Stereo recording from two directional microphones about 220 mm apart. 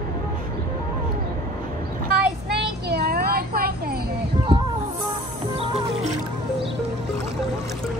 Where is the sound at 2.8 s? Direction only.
45° right (ahead or behind).